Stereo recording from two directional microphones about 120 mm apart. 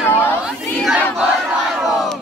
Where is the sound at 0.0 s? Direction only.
15° left (ahead or behind).